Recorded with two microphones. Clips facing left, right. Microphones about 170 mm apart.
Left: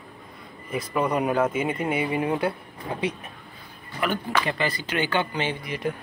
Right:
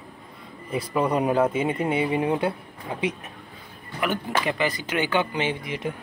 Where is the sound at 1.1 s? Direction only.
30° right (ahead or behind).